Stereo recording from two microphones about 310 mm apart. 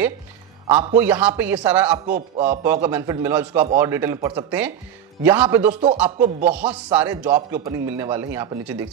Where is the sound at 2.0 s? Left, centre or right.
Right.